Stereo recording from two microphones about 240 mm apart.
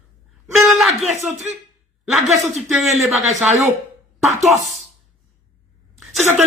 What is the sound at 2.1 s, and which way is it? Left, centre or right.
Speech, right.